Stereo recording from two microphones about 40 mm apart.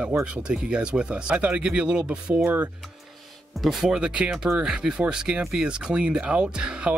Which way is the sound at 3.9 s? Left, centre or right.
Right.